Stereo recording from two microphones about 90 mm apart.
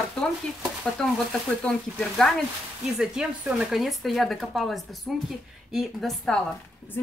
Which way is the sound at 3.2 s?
10° right (ahead or behind).